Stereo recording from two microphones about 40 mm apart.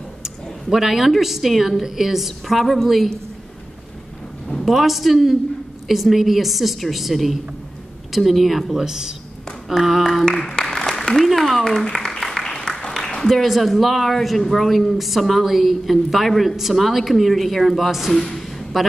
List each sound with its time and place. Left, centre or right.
0.2 s speech: centre
4.5 s a man's voice: centre
9.7 s speech: centre
10.6 s applause: centre
11.1 s speech: centre
12.0 s music: centre
12.9 s a woman's voice: centre